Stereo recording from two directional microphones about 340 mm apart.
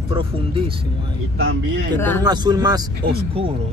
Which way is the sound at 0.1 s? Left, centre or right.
Centre.